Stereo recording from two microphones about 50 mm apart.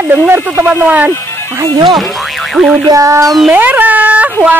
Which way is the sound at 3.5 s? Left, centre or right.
Right.